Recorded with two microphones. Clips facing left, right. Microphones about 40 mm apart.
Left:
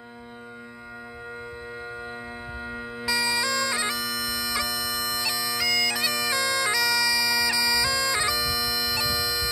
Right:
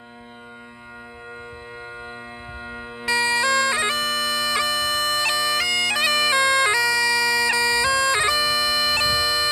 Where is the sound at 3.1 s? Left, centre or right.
Right.